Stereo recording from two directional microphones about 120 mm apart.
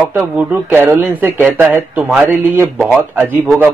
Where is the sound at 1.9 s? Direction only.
5° right (ahead or behind).